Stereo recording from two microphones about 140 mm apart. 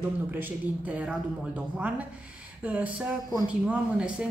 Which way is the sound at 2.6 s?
10° right (ahead or behind).